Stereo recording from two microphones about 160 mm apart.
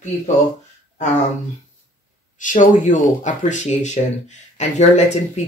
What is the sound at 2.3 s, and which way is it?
Speech, 50° left (ahead or behind).